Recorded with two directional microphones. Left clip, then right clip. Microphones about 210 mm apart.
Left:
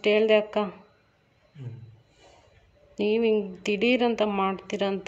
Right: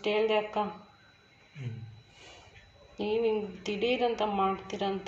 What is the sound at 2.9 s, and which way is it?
Speech, 50° left (ahead or behind).